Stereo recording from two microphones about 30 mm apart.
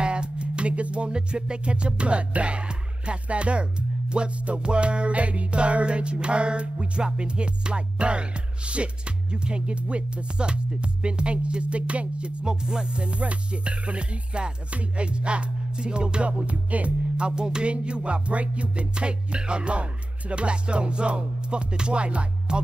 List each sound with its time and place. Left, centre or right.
0.0 s music: right
12.4 s music: right
16.3 s music: right
17.4 s music: right
17.6 s music: right